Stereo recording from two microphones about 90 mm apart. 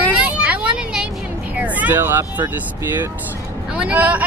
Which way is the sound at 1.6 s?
20° right (ahead or behind).